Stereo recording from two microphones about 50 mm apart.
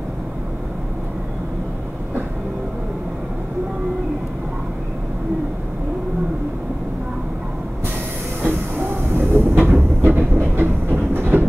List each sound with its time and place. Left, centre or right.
8.4 s train: right